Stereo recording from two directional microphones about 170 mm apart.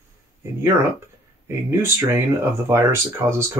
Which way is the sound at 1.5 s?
15° right (ahead or behind).